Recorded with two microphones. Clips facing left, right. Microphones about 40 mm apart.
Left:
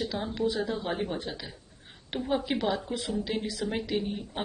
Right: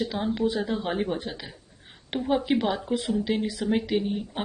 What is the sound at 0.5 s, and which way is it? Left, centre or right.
Speech, right.